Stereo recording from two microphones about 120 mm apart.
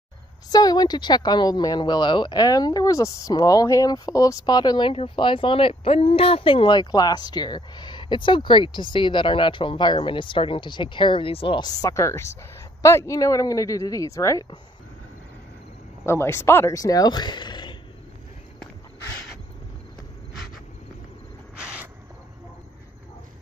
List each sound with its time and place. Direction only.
0.5 s speech: 35° left (ahead or behind)
16.1 s speech: 20° left (ahead or behind); by 17.7 s 40° left (ahead or behind)
21.5 s a sound: 10° right (ahead or behind)